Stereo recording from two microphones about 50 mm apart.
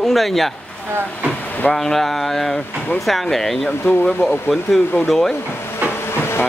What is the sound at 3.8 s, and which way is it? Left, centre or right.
Speech, left.